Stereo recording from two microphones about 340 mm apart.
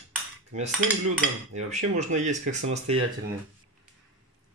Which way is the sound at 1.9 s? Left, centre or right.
Right.